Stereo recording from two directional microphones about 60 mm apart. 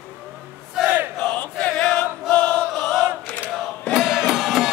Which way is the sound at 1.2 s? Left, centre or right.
Left.